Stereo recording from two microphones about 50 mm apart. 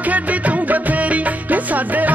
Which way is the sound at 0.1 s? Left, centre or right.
Right.